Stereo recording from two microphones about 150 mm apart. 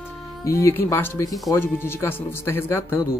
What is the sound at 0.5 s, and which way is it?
Speech, 20° left (ahead or behind).